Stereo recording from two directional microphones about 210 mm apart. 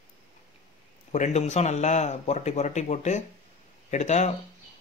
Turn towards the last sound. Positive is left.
turn(degrees=35)  # may be behind; listen again after turning